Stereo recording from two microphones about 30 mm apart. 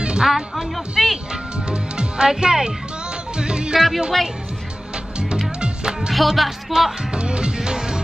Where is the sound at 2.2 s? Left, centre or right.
Right.